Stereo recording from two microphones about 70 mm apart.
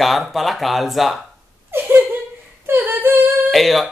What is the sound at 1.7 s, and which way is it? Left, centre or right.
Laughter, right.